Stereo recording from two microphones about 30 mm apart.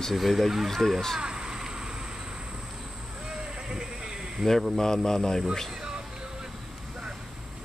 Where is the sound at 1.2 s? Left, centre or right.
Right.